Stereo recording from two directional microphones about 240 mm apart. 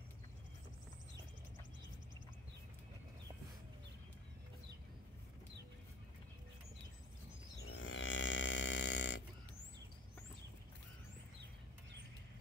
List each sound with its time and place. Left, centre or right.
7.7 s music: left